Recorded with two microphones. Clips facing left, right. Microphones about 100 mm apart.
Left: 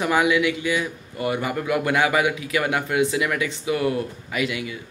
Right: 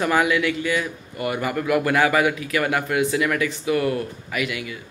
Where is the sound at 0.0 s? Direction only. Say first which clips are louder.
Even; 15° left (ahead or behind).